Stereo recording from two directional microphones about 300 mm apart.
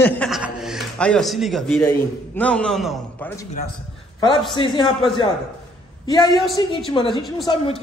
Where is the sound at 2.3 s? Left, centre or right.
Centre.